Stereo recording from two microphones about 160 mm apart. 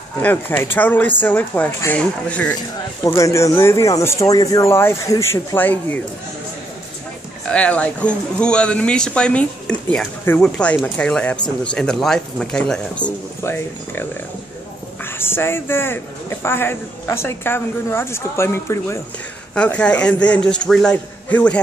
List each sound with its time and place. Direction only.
0.2 s a man's voice: 10° left (ahead or behind)
3.0 s a man's voice: 20° left (ahead or behind)
7.4 s a man's voice: 10° left (ahead or behind)
13.4 s a man's voice: 15° left (ahead or behind)
15.0 s a man's voice: 15° left (ahead or behind)